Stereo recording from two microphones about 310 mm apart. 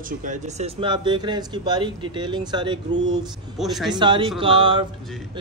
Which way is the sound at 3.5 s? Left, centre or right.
Centre.